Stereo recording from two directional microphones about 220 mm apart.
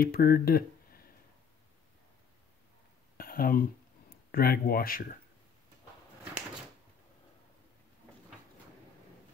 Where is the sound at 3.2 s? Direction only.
40° left (ahead or behind).